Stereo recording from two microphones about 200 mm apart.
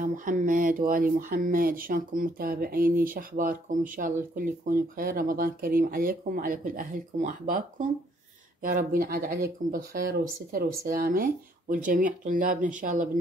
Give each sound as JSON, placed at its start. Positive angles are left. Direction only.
{"t": 0.0, "sound": "speech", "side_deg": -40}
{"t": 8.6, "sound": "speech", "side_deg": -45}